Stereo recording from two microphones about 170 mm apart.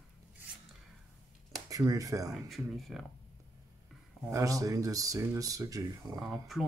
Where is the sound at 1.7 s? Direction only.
20° right (ahead or behind).